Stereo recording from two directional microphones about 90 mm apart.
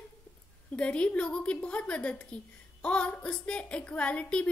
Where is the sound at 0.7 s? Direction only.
15° left (ahead or behind).